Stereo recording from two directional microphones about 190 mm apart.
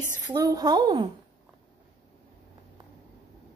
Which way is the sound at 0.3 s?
20° right (ahead or behind).